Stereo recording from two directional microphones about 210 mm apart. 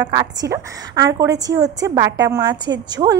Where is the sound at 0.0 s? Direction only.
15° right (ahead or behind).